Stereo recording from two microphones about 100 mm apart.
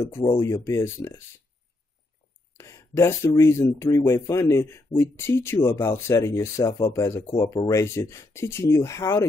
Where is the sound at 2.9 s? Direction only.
25° left (ahead or behind).